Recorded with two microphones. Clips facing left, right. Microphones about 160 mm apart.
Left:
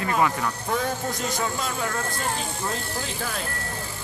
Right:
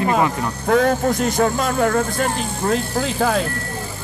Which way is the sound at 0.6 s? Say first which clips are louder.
Right 13 dB; 70° right (ahead or behind).